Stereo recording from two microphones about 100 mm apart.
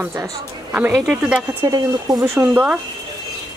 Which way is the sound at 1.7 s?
45° right (ahead or behind).